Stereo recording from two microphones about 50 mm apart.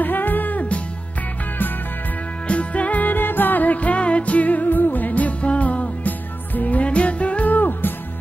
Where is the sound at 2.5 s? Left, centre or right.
Left.